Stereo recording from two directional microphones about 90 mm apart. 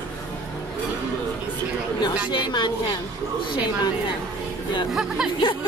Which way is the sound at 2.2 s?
55° left (ahead or behind).